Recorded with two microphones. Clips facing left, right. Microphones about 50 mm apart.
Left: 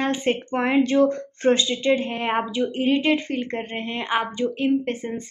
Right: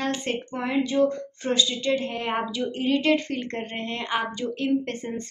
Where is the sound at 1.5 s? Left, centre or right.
Left.